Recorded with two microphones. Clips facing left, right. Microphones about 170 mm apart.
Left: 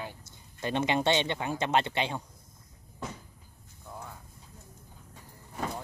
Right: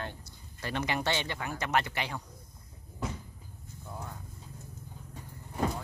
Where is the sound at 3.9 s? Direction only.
Centre (ahead or behind).